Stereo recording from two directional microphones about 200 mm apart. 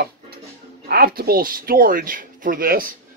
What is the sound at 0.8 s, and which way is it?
Speech, 50° right (ahead or behind).